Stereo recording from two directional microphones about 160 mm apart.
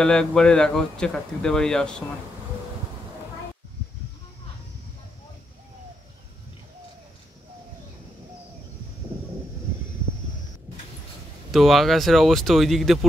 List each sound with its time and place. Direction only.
0.0 s speech: 5° left (ahead or behind)
11.5 s speech: centre (ahead or behind)